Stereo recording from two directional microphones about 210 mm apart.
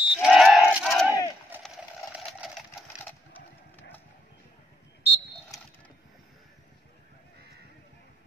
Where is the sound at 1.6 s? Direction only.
Centre (ahead or behind).